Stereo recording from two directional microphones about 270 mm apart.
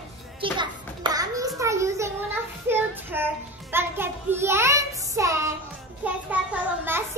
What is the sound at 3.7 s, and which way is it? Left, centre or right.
Child singing, centre.